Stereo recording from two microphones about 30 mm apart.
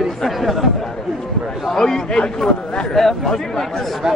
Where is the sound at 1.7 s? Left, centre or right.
Centre.